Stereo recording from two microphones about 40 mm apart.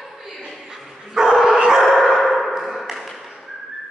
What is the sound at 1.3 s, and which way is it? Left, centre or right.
Dog, centre.